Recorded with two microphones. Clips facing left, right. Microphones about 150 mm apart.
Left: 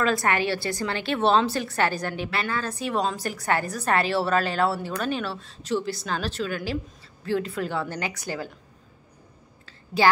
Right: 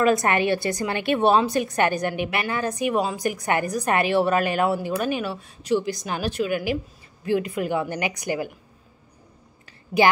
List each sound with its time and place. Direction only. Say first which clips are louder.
0.0 s a woman's voice: right 4 dB; 20° right (ahead or behind)
10.0 s a woman's voice: right 1 dB; 20° right (ahead or behind)